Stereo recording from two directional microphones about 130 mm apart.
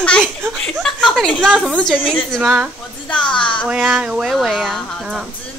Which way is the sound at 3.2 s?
40° left (ahead or behind).